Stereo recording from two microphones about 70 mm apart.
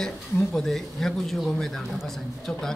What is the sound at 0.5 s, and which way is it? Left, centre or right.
A man's voice, centre.